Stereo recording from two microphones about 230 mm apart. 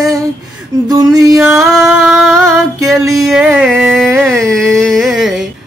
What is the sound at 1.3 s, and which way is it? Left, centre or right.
Music, centre.